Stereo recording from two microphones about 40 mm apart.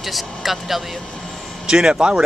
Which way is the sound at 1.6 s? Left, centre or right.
Centre.